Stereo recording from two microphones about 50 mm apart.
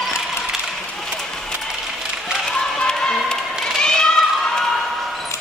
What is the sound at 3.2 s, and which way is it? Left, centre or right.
Cat, centre.